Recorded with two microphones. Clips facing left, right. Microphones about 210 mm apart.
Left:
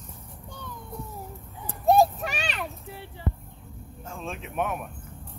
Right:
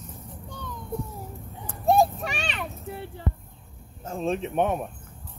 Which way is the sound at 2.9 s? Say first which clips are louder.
Right 5 dB; 50° right (ahead or behind).